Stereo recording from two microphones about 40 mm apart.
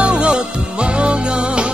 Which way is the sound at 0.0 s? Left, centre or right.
Right.